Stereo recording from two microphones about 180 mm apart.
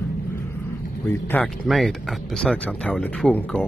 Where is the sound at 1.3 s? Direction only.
5° left (ahead or behind).